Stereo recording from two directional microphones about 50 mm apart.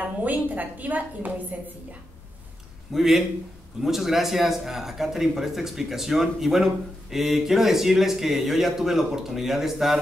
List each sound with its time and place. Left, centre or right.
0.0 s a woman's voice: right
2.9 s speech: centre